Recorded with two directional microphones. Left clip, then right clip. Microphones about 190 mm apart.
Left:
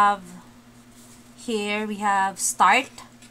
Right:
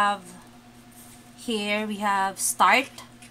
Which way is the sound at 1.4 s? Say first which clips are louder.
Left 1 dB; 10° left (ahead or behind).